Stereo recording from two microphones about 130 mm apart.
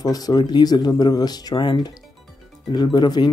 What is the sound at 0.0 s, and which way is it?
Speech, 30° left (ahead or behind).